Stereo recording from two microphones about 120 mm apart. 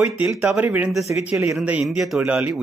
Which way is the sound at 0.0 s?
15° right (ahead or behind).